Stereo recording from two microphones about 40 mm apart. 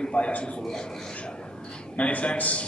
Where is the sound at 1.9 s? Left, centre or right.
Left.